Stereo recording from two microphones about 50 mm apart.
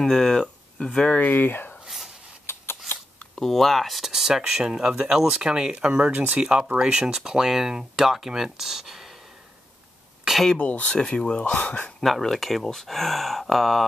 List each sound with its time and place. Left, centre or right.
0.0 s speech: centre
1.2 s speech: left
2.4 s scissors: left
3.3 s speech: centre
10.6 s speech: left
11.5 s speech: left
12.0 s speech: centre